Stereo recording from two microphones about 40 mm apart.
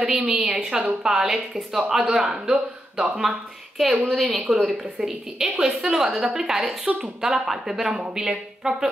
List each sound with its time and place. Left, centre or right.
0.3 s a woman's voice: centre
3.0 s speech: centre
5.6 s a woman's voice: right